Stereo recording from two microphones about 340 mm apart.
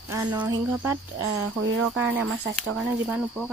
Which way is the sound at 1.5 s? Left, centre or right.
Right.